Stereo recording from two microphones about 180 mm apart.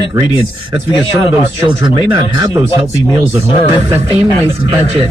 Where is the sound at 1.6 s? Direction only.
25° right (ahead or behind).